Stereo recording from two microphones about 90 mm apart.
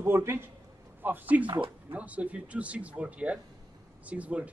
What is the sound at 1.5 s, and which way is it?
Speech, 70° right (ahead or behind).